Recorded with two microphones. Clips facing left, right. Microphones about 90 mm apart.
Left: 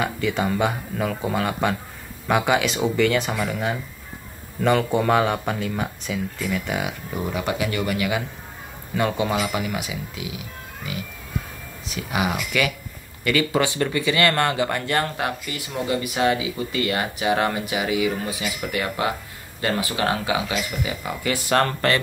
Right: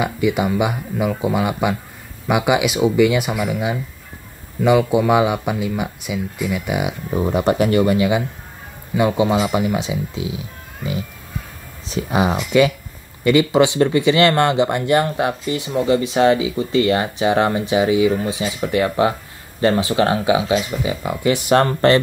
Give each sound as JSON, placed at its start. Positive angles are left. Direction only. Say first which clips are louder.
{"t": 0.0, "sound": "speech", "louder": "right 5 dB", "side_deg": -15}
{"t": 7.1, "sound": "speech", "louder": "right 11 dB", "side_deg": -30}
{"t": 11.9, "sound": "speech", "louder": "right 6 dB", "side_deg": -30}